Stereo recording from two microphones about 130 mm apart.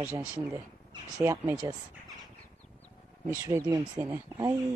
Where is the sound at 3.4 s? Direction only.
25° right (ahead or behind).